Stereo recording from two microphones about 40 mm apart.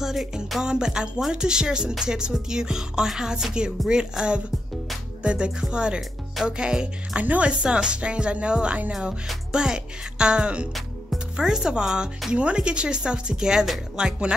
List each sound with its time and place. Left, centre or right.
0.0 s music: centre
0.7 s speech: centre
5.2 s speech: right
7.2 s speech: right
7.6 s speech: right